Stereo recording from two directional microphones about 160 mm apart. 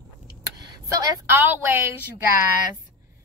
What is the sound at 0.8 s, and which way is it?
A woman's voice, 15° right (ahead or behind).